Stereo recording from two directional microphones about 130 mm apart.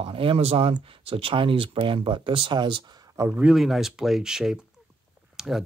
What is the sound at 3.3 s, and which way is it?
Speech, 10° right (ahead or behind).